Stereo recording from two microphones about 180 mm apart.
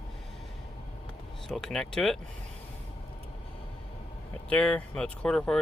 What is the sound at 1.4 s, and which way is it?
Speech, 5° left (ahead or behind).